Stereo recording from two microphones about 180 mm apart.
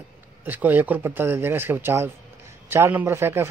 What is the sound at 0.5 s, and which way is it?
Speech, 10° right (ahead or behind).